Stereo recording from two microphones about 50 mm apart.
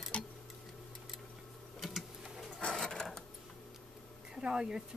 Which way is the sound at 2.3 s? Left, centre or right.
Centre.